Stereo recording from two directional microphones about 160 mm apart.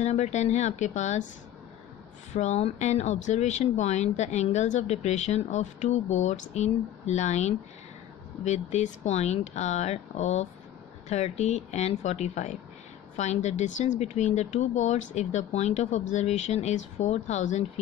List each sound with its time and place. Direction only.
0.0 s speech: 45° left (ahead or behind)
2.3 s speech: 45° left (ahead or behind)